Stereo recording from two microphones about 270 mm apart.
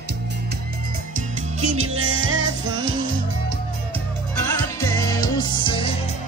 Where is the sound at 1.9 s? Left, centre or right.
Right.